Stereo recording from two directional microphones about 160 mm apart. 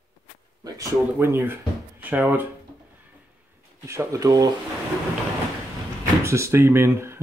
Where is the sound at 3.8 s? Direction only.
20° right (ahead or behind).